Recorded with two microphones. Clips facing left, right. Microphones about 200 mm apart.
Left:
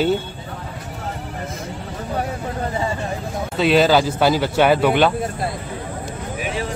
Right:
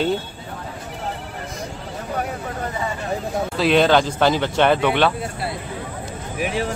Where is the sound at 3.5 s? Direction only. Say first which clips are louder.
Left 1 dB; centre (ahead or behind).